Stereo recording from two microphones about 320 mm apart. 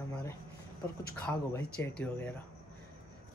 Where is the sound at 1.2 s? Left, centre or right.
Centre.